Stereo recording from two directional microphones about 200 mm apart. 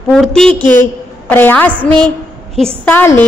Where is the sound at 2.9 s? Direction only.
10° left (ahead or behind).